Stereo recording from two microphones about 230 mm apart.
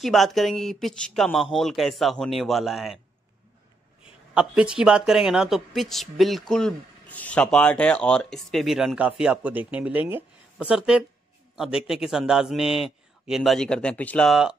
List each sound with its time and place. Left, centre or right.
0.0 s speech: centre
4.3 s speech: centre